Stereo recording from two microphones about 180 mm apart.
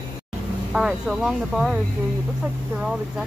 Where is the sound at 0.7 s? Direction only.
5° right (ahead or behind).